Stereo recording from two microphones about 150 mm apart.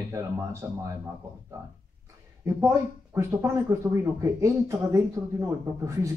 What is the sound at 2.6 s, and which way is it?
Speech, 15° right (ahead or behind).